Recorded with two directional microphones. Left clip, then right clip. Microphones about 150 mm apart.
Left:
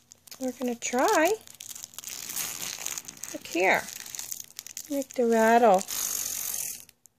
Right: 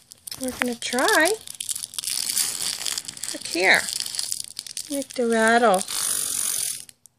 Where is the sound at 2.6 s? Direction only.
10° left (ahead or behind).